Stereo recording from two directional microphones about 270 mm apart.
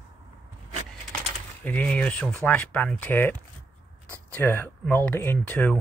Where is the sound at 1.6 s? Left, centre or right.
Centre.